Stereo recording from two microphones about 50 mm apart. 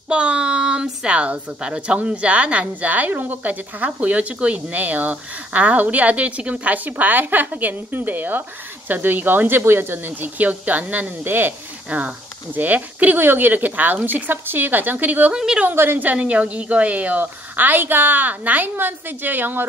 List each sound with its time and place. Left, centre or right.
0.1 s a woman's voice: right
11.9 s a woman's voice: right
15.3 s a woman's voice: centre
15.7 s a woman's voice: right
16.2 s a woman's voice: right
17.2 s a woman's voice: right